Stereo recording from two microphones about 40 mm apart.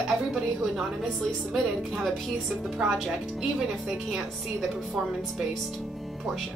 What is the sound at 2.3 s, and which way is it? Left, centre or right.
Speech, centre.